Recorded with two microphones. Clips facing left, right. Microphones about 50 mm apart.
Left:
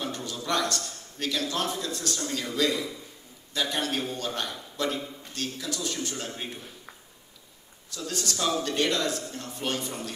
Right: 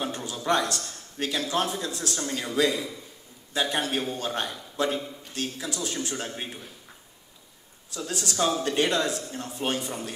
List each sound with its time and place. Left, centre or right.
0.0 s a sound: right
0.7 s speech: right
8.3 s speech: centre